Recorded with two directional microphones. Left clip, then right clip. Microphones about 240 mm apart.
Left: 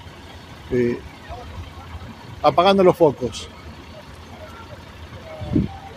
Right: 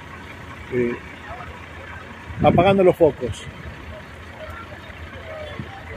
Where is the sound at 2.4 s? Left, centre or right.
Centre.